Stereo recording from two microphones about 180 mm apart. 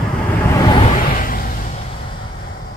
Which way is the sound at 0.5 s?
15° left (ahead or behind).